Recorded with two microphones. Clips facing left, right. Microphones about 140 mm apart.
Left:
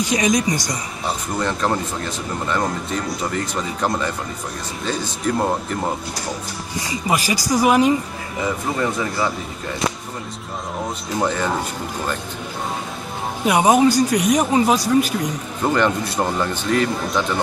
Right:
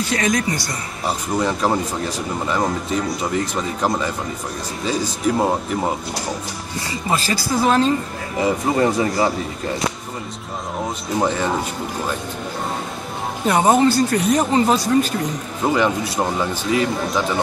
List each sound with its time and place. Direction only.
0.0 s speech: 20° left (ahead or behind)
1.0 s speech: 5° right (ahead or behind)
6.9 s speech: 15° left (ahead or behind)
8.4 s speech: 35° right (ahead or behind)
11.1 s speech: centre (ahead or behind)
13.5 s speech: 10° left (ahead or behind)
15.6 s speech: 5° right (ahead or behind)